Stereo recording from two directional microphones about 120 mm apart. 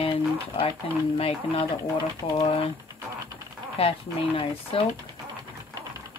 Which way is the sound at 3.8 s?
50° left (ahead or behind).